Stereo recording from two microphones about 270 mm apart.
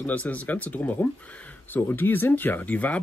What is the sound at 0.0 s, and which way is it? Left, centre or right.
Speech, centre.